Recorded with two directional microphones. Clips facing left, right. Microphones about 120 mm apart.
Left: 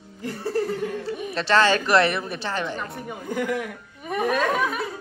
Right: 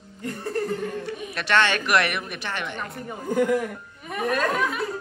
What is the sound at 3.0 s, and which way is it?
Speech, 5° left (ahead or behind).